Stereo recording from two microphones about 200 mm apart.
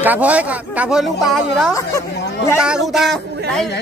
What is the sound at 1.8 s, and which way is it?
Speech, 15° left (ahead or behind).